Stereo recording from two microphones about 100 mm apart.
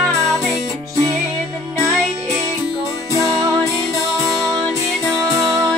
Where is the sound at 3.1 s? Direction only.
35° right (ahead or behind).